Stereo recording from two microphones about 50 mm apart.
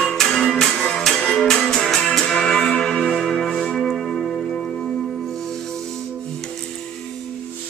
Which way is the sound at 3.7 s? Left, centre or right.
Centre.